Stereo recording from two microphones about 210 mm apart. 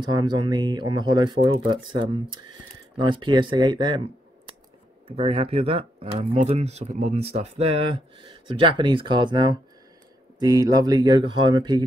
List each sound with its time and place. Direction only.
0.0 s speech: 20° right (ahead or behind)
5.0 s speech: 25° right (ahead or behind)